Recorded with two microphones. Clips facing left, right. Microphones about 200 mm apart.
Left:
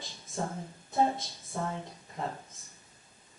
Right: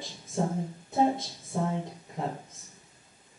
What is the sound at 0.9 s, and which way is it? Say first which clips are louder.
A woman's voice: right 3 dB; 5° right (ahead or behind).